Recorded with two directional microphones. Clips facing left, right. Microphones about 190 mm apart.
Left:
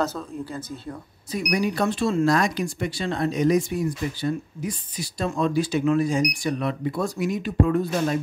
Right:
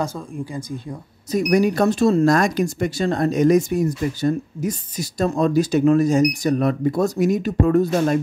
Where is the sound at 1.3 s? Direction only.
45° right (ahead or behind).